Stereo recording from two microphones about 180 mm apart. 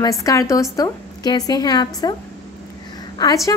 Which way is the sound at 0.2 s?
15° left (ahead or behind).